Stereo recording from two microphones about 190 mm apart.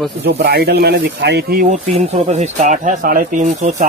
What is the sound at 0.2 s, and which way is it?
Speech, 55° right (ahead or behind).